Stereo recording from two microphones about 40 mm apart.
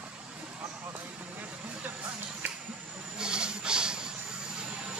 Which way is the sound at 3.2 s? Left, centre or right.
Right.